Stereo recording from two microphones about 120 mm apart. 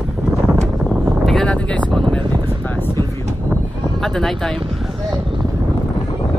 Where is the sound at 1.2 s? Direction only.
5° left (ahead or behind).